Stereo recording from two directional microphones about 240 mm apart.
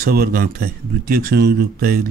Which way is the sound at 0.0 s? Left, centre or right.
Right.